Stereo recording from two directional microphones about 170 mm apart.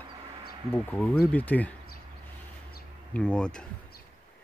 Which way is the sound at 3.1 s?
5° left (ahead or behind).